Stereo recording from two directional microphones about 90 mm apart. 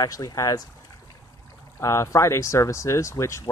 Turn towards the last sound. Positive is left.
turn(degrees=35)  # may be behind; listen again after turning